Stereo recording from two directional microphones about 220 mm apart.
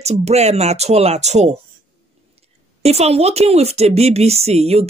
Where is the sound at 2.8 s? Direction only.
30° right (ahead or behind).